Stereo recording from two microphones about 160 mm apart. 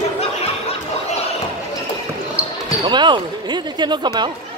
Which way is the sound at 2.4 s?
10° right (ahead or behind).